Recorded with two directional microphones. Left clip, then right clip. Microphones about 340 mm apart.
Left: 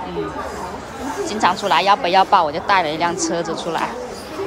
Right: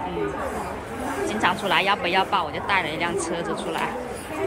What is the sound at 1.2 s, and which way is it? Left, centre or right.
A woman's voice, centre.